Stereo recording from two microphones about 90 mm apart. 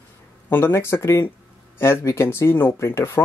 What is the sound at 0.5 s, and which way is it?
Speech, 25° left (ahead or behind).